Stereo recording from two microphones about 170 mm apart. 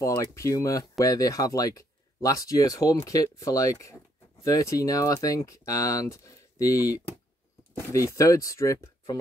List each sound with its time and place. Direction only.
0.0 s speech: 15° left (ahead or behind)